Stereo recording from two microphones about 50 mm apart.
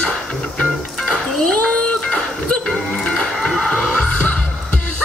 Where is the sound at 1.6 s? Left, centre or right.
Left.